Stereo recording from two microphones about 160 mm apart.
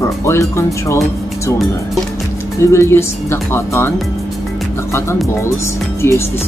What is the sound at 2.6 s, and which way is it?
Speech, 15° left (ahead or behind).